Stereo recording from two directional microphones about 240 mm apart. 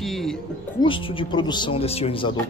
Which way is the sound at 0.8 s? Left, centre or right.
Left.